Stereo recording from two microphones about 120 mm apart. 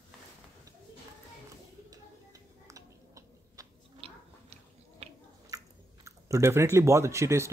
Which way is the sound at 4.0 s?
55° right (ahead or behind).